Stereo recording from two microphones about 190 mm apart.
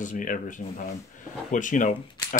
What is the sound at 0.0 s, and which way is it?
Speech, 45° left (ahead or behind).